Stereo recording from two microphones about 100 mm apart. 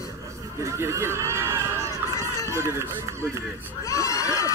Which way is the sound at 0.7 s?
30° right (ahead or behind).